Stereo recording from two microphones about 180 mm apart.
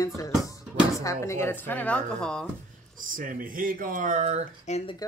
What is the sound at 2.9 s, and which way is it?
Speech, 50° right (ahead or behind).